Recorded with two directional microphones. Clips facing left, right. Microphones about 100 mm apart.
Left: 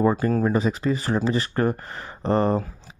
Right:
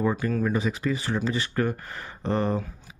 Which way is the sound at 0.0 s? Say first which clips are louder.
Left 5 dB; 35° left (ahead or behind).